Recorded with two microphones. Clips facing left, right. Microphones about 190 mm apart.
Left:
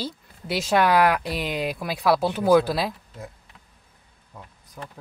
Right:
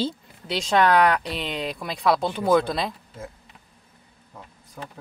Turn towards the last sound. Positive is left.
turn(degrees=5)  # may be behind; listen again after turning